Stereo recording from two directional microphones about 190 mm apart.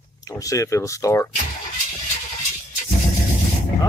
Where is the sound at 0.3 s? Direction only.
15° left (ahead or behind).